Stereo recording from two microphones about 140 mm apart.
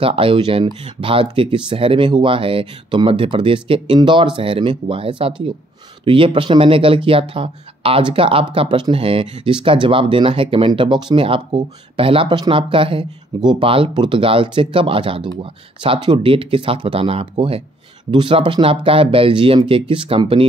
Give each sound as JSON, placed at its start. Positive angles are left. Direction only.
{"t": 0.0, "sound": "speech", "side_deg": -40}